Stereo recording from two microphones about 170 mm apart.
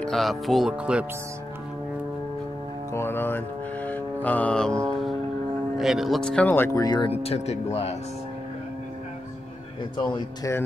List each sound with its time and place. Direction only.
0.0 s music: centre (ahead or behind)
2.9 s music: 15° left (ahead or behind)
5.8 s speech: centre (ahead or behind); by 8.0 s 40° left (ahead or behind)
9.9 s speech: 25° left (ahead or behind)